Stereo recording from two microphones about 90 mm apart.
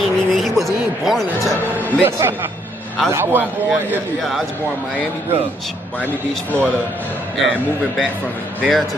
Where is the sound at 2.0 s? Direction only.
30° right (ahead or behind).